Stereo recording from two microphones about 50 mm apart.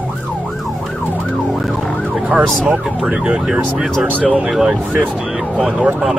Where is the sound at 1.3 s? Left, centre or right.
Centre.